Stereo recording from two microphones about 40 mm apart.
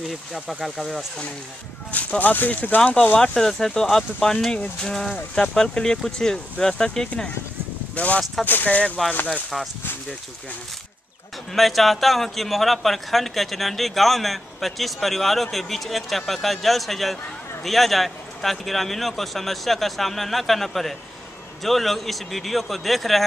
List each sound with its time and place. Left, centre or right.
0.3 s a man's voice: centre
1.9 s speech: left
2.8 s speech: left
7.9 s speech: left
8.5 s speech: left
9.0 s speech: centre
11.5 s a man's voice: centre